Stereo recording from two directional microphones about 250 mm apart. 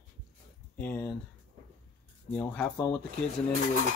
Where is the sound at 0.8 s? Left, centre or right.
Centre.